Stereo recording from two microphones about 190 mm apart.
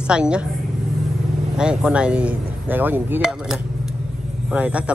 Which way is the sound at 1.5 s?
5° right (ahead or behind).